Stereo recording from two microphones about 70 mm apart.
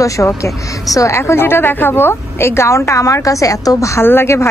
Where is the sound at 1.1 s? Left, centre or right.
Left.